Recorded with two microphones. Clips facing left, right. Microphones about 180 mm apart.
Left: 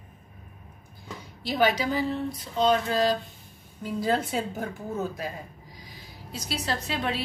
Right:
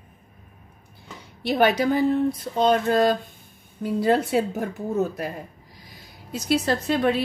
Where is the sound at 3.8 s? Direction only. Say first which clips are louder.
Right 6 dB; 60° right (ahead or behind).